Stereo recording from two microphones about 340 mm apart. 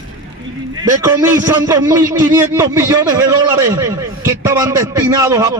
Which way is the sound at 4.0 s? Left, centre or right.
Centre.